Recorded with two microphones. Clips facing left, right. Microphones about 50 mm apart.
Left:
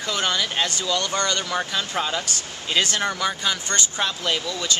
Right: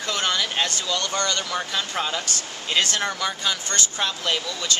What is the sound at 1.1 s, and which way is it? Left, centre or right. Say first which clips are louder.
Speech: left 1 dB; centre.